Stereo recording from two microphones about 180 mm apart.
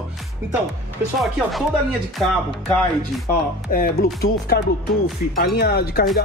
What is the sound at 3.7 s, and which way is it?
Speech, 50° left (ahead or behind).